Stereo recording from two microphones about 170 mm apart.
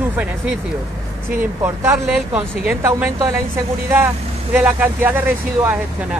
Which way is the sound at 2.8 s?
20° right (ahead or behind).